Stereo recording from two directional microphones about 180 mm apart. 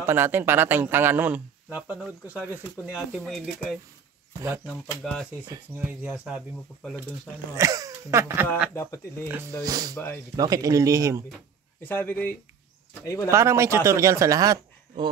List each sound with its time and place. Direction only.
0.0 s a man's voice: 10° right (ahead or behind)
4.6 s speech: centre (ahead or behind)
5.9 s speech: 10° right (ahead or behind)
7.5 s a man's voice: 20° right (ahead or behind)
8.7 s speech: 15° left (ahead or behind)
9.6 s speech: 20° right (ahead or behind)
9.9 s speech: 10° left (ahead or behind)
10.3 s speech: 20° right (ahead or behind)
11.8 s speech: 10° left (ahead or behind)
13.3 s a man's voice: 15° right (ahead or behind)